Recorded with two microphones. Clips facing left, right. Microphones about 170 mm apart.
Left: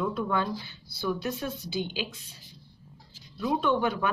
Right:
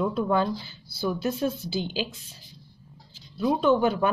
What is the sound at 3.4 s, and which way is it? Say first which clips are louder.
Speech: right 5 dB; 30° right (ahead or behind).